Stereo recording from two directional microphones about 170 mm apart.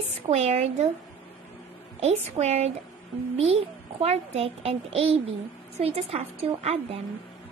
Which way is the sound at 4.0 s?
35° right (ahead or behind).